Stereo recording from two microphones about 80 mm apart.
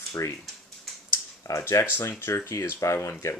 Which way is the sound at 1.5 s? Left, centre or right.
Left.